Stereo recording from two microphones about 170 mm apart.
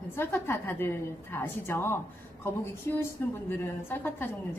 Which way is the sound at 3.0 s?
15° left (ahead or behind).